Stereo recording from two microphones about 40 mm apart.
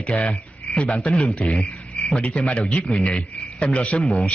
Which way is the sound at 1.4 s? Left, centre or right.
Left.